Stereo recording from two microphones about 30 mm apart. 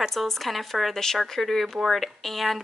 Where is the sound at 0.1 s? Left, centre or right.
Centre.